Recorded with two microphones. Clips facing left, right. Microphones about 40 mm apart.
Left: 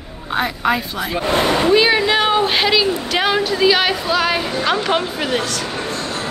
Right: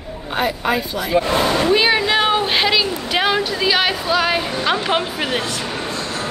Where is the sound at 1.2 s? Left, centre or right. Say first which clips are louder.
Even; left.